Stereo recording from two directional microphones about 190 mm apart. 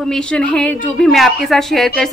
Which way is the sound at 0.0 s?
5° left (ahead or behind).